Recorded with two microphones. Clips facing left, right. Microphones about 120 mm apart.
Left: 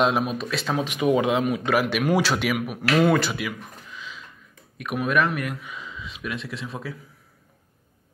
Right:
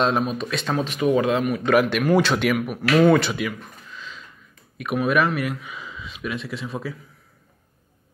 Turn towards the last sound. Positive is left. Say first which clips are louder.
# right 3 dB
turn(degrees=0)  # may be behind; listen again after turning